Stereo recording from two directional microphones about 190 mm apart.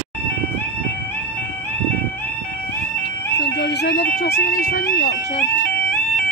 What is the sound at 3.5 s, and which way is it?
Bagpipes, 65° left (ahead or behind).